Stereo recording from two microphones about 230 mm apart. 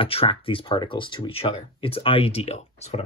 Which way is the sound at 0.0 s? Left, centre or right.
Left.